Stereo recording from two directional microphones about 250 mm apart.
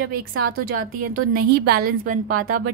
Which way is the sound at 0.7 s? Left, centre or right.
Right.